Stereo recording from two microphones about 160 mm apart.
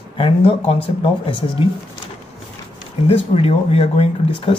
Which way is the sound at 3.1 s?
35° left (ahead or behind).